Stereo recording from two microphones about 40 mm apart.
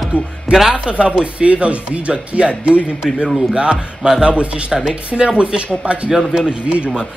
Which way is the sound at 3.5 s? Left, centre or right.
Right.